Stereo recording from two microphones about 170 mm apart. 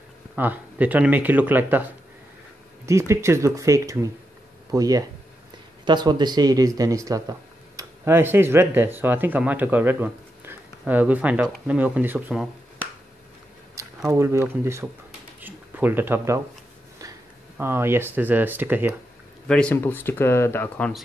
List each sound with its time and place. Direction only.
0.4 s speech: 10° right (ahead or behind)
2.9 s speech: 15° right (ahead or behind)
14.0 s speech: 15° right (ahead or behind)
15.4 s a sound: 10° right (ahead or behind)
17.6 s speech: 15° right (ahead or behind)
19.4 s speech: 5° left (ahead or behind)